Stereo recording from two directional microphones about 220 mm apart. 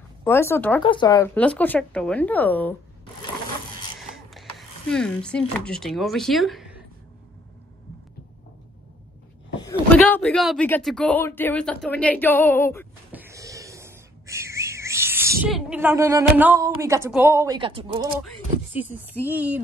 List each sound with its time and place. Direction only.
0.2 s speech: 10° left (ahead or behind)
0.8 s speech: 20° left (ahead or behind)
4.1 s speech: centre (ahead or behind)
9.6 s speech: 10° left (ahead or behind)
13.1 s a sound: 10° right (ahead or behind)
16.8 s speech: 15° right (ahead or behind)
17.6 s speech: 25° right (ahead or behind)
18.2 s speech: 10° right (ahead or behind)